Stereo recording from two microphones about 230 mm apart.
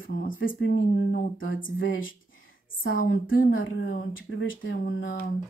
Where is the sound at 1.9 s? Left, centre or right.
Left.